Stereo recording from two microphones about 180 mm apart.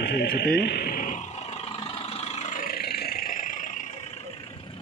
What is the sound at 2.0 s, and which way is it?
Vehicle, 35° left (ahead or behind).